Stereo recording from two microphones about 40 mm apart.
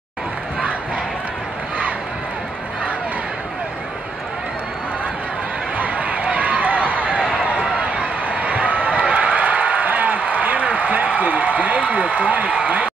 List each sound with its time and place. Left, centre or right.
5.8 s run: right